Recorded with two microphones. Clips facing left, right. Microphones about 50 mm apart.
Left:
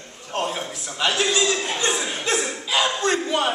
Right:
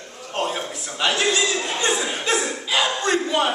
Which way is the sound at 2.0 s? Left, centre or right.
Centre.